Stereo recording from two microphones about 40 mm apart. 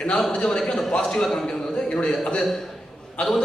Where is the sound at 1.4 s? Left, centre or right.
Centre.